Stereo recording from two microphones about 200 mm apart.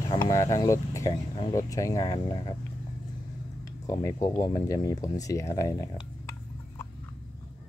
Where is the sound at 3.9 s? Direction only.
15° left (ahead or behind).